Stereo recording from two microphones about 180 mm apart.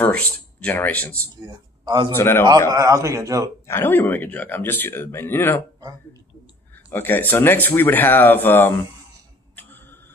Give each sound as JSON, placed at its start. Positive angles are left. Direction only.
{"t": 0.0, "sound": "speech", "side_deg": 10}
{"t": 1.4, "sound": "speech", "side_deg": -20}
{"t": 2.1, "sound": "speech", "side_deg": 15}
{"t": 2.7, "sound": "a man's voice", "side_deg": -20}
{"t": 3.6, "sound": "speech", "side_deg": 10}
{"t": 6.9, "sound": "speech", "side_deg": 10}
{"t": 9.6, "sound": "clock", "side_deg": 10}